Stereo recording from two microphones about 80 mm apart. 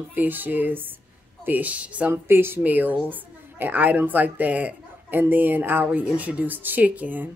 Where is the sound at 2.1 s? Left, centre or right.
Right.